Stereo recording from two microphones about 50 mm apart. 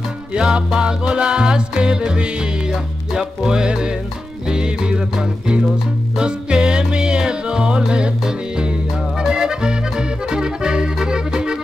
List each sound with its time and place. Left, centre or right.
0.3 s music: centre
9.2 s music: centre